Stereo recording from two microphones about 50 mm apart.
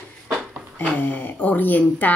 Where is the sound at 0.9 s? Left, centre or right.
Left.